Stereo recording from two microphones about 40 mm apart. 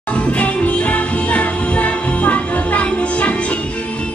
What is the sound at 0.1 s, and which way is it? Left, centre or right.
Music, left.